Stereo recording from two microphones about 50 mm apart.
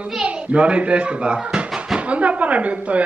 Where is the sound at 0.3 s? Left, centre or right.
Right.